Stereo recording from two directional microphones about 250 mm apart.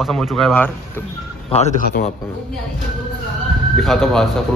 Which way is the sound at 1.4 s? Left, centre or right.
Left.